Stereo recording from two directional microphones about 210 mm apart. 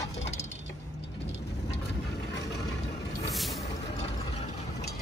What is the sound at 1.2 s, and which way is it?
Vehicle, 55° left (ahead or behind).